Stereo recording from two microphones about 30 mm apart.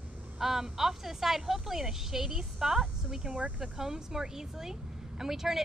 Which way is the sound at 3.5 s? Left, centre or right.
Right.